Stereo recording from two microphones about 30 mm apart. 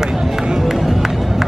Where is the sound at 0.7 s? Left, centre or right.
Centre.